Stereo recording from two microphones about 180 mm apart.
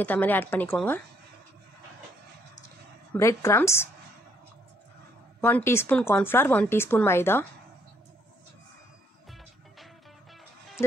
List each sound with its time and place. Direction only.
0.0 s speech: 10° left (ahead or behind)
3.2 s speech: 15° left (ahead or behind)
5.4 s speech: 10° left (ahead or behind)